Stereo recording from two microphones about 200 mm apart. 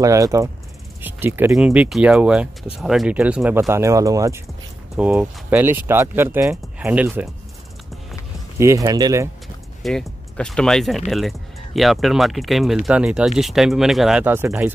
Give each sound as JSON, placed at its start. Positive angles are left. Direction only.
{"t": 0.0, "sound": "speech", "side_deg": -15}
{"t": 8.5, "sound": "speech", "side_deg": -15}
{"t": 9.8, "sound": "speech", "side_deg": 5}